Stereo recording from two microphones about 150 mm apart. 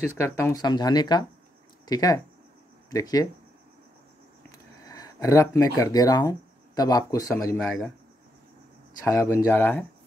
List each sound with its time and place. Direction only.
0.2 s speech: 20° left (ahead or behind)
4.5 s speech: 25° left (ahead or behind)
9.0 s speech: 20° left (ahead or behind)